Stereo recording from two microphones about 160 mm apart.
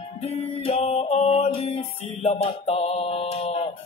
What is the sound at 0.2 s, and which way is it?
Music, 40° left (ahead or behind).